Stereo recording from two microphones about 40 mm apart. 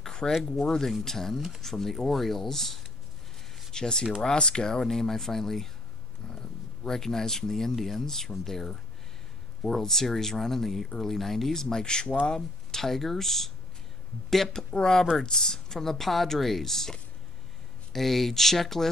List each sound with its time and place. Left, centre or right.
0.0 s a sound: centre
0.5 s speech: centre
12.8 s speech: centre